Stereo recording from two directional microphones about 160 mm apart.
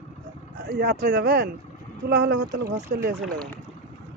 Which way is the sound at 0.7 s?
90° right.